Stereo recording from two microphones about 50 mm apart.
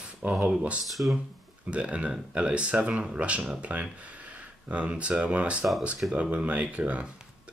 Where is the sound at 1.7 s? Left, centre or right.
Right.